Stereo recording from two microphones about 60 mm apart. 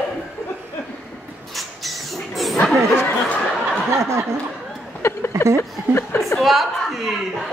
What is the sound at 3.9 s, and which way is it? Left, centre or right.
Snicker, right.